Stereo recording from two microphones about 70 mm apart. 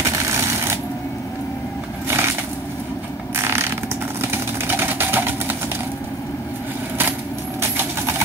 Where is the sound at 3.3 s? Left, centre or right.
Right.